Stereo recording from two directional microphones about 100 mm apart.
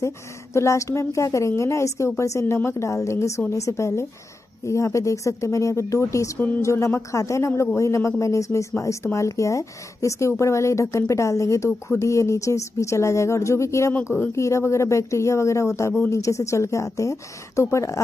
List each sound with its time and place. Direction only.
0.0 s a woman's voice: 30° left (ahead or behind)
14.0 s speech: 20° left (ahead or behind)
14.3 s a woman's voice: 30° left (ahead or behind)